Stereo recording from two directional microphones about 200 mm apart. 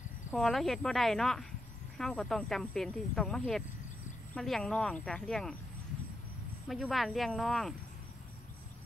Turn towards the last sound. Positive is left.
turn(degrees=0)  # may be behind; listen again after turning